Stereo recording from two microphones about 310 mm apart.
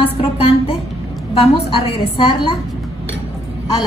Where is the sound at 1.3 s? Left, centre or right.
Centre.